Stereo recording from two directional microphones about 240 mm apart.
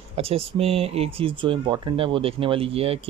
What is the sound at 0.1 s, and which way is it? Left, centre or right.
Speech, right.